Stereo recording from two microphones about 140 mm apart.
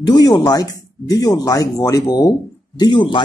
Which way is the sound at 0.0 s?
30° left (ahead or behind).